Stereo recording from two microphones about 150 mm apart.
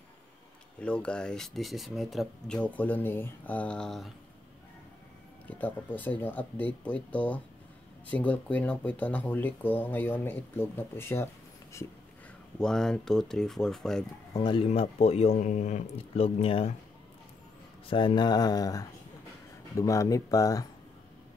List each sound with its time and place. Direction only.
0.7 s speech: 5° left (ahead or behind)
5.5 s speech: 10° left (ahead or behind)
12.5 s speech: 5° left (ahead or behind)
14.3 s speech: 35° left (ahead or behind)
14.7 s speech: 45° left (ahead or behind)
15.3 s speech: 55° left (ahead or behind)
17.8 s speech: 30° left (ahead or behind)